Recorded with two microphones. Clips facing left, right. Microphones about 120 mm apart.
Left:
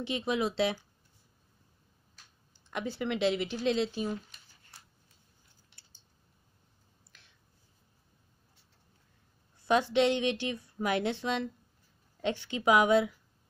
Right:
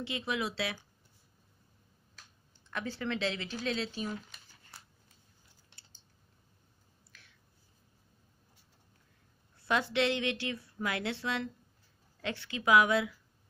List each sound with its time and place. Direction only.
0.0 s a woman's voice: 20° left (ahead or behind)
2.7 s speech: 15° left (ahead or behind)
9.7 s a woman's voice: 20° left (ahead or behind)